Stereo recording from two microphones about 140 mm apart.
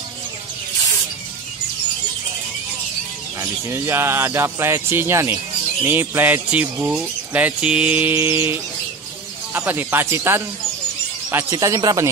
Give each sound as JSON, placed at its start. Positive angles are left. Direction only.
{"t": 3.3, "sound": "speech", "side_deg": -20}
{"t": 5.9, "sound": "bird", "side_deg": -15}
{"t": 11.2, "sound": "speech", "side_deg": -20}